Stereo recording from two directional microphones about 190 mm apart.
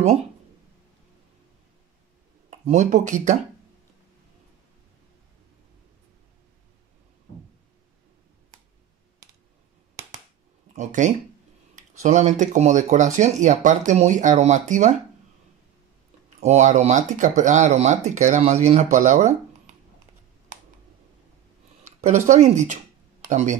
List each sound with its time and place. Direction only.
2.5 s speech: 35° right (ahead or behind)
10.8 s speech: 40° right (ahead or behind)
16.3 s speech: 35° right (ahead or behind)
22.0 s speech: 40° right (ahead or behind)